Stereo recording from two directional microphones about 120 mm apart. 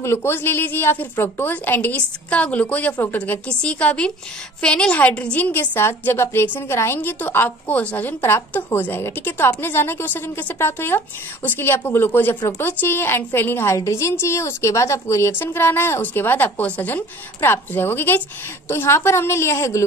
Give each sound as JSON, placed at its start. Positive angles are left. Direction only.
{"t": 0.0, "sound": "a woman's voice", "side_deg": 20}